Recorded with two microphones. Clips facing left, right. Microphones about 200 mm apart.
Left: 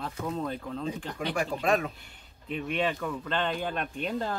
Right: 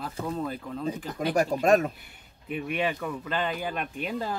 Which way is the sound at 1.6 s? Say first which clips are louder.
Right 5 dB; 45° right (ahead or behind).